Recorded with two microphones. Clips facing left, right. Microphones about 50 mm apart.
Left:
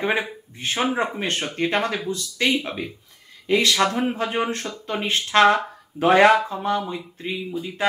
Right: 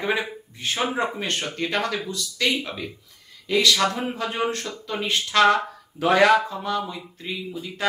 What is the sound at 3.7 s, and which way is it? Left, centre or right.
Speech, left.